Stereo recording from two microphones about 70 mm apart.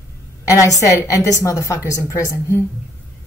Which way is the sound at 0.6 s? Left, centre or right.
Left.